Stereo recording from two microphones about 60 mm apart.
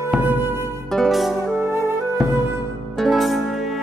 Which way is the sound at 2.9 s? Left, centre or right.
Centre.